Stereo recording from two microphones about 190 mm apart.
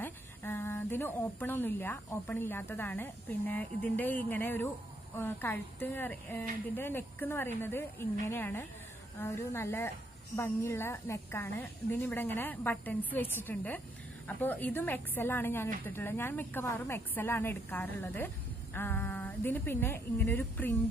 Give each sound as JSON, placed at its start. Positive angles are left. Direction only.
{"t": 0.0, "sound": "a woman's voice", "side_deg": 10}